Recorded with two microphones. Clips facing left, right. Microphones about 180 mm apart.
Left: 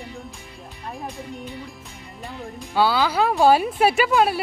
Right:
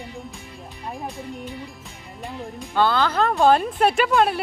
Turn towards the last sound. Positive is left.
turn(degrees=5)  # may be behind; listen again after turning